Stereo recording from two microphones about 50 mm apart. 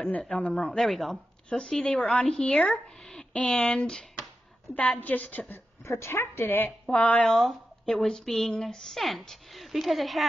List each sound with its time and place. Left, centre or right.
0.3 s speech: left
0.7 s speech: centre
1.5 s speech: centre
3.0 s a sound: centre
3.3 s speech: left
4.7 s a woman's voice: left
5.9 s a woman's voice: left
6.9 s speech: left
7.2 s speech: centre